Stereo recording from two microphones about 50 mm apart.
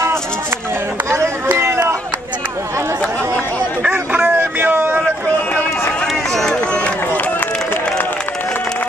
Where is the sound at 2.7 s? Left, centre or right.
Right.